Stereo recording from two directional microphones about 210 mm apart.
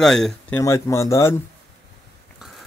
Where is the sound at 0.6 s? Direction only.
15° left (ahead or behind).